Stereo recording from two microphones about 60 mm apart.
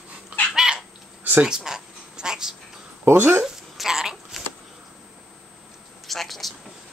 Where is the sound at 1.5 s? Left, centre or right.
Centre.